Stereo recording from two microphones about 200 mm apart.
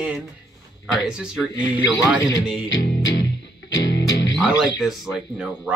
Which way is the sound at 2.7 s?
60° left (ahead or behind).